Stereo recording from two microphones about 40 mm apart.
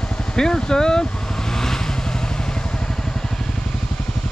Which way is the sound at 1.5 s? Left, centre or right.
Centre.